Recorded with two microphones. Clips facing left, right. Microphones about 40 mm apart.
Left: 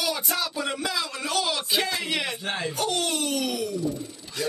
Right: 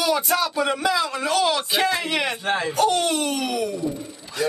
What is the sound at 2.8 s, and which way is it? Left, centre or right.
Speech, centre.